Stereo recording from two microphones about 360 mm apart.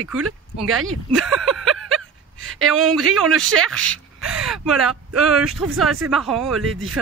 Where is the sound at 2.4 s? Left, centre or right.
Right.